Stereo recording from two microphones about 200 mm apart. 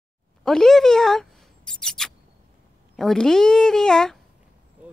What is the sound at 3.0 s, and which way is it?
A woman's voice, centre (ahead or behind).